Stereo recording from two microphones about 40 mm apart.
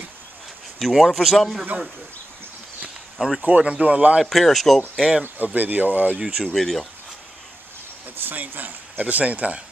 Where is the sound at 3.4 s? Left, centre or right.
Right.